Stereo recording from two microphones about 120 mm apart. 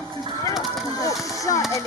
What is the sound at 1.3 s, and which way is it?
Speech, 25° left (ahead or behind).